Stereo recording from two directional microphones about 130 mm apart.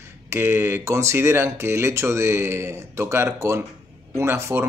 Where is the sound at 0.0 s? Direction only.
20° right (ahead or behind).